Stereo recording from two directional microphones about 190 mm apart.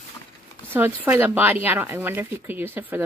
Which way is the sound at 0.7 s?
10° right (ahead or behind).